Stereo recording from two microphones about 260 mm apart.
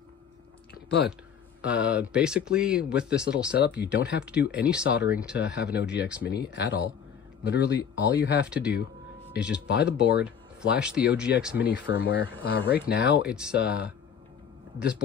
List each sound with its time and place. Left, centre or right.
0.8 s speech: left
1.6 s speech: centre
3.6 s speech: left
4.3 s speech: centre
5.4 s speech: left
5.9 s speech: centre
6.2 s speech: left
8.5 s speech: centre
9.7 s speech: left
10.2 s speech: centre
11.6 s speech: left
13.3 s speech: centre
14.8 s speech: left